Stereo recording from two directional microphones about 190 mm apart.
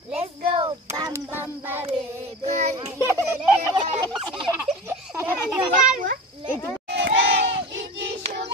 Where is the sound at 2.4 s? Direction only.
35° right (ahead or behind).